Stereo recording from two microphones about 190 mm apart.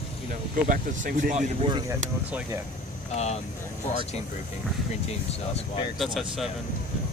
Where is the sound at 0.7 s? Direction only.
45° right (ahead or behind).